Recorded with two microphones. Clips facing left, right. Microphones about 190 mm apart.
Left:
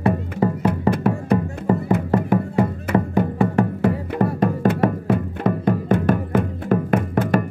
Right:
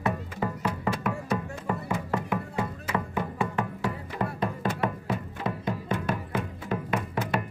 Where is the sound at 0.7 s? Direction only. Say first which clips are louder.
Left 8 dB; 55° left (ahead or behind).